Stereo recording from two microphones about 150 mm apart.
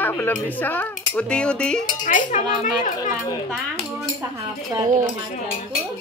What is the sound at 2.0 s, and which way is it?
Speech, 60° left (ahead or behind).